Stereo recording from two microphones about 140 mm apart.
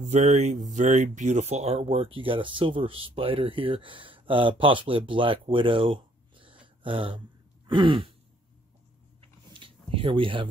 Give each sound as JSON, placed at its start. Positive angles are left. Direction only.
{"t": 0.0, "sound": "speech", "side_deg": -55}
{"t": 7.6, "sound": "throat clearing", "side_deg": -35}
{"t": 9.2, "sound": "a sound", "side_deg": -40}